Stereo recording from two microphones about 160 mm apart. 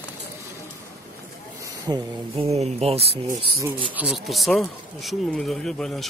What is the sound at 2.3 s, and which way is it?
Speech, 40° right (ahead or behind).